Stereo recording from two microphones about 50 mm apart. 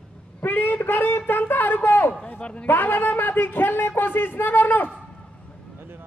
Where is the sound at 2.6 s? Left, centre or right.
Left.